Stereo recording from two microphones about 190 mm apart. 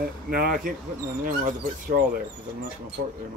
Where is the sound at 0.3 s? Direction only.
50° right (ahead or behind).